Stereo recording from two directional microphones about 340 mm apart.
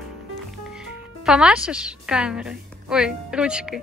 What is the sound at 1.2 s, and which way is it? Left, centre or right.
A woman's voice, centre.